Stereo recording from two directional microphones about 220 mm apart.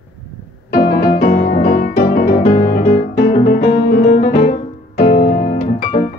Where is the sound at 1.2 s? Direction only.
35° left (ahead or behind).